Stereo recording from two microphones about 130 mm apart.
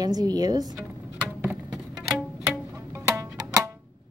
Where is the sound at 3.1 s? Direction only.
25° right (ahead or behind).